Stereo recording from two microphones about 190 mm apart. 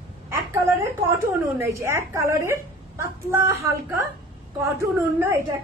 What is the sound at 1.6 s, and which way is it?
A woman's voice, 15° right (ahead or behind).